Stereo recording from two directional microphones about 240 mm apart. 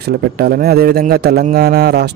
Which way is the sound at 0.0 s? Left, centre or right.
Right.